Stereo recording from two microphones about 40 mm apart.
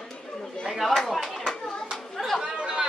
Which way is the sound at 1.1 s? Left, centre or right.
Centre.